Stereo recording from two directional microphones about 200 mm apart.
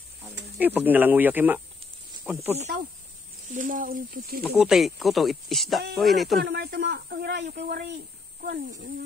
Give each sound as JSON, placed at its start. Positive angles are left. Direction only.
{"t": 0.6, "sound": "speech", "side_deg": -10}
{"t": 3.5, "sound": "speech", "side_deg": -40}
{"t": 4.5, "sound": "speech", "side_deg": -5}
{"t": 6.4, "sound": "speech", "side_deg": -50}